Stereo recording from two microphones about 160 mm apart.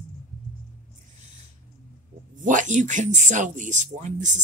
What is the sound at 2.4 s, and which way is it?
Speech, 50° right (ahead or behind).